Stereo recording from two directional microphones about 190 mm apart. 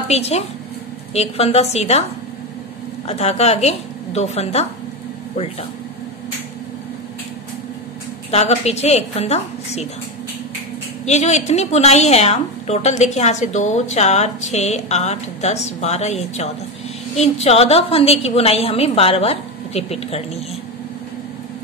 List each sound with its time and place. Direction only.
0.1 s a woman's voice: 35° left (ahead or behind)
3.1 s a woman's voice: 35° left (ahead or behind)
8.3 s a woman's voice: 35° left (ahead or behind)
11.1 s a woman's voice: 35° left (ahead or behind)